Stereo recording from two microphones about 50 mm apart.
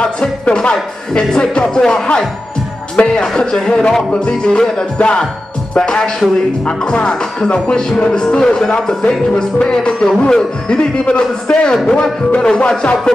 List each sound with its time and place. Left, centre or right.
0.0 s speech: centre
3.0 s music: centre
4.1 s speech: centre
5.8 s music: centre
12.3 s speech: left